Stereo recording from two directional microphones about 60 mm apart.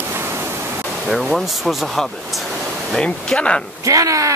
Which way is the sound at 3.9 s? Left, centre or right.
Right.